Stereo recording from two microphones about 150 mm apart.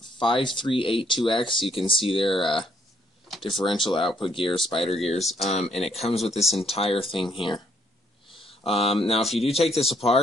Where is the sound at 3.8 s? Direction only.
35° left (ahead or behind).